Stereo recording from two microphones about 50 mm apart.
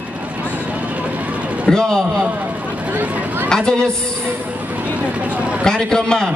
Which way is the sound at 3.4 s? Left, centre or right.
Centre.